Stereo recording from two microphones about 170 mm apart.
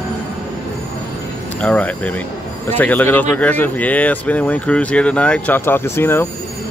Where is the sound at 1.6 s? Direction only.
5° left (ahead or behind).